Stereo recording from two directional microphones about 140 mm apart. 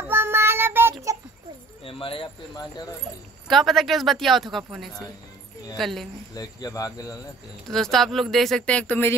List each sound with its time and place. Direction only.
0.1 s child singing: 15° right (ahead or behind)
1.9 s speech: 40° left (ahead or behind)
3.4 s speech: centre (ahead or behind)
6.3 s speech: 25° left (ahead or behind)
7.6 s speech: 5° left (ahead or behind)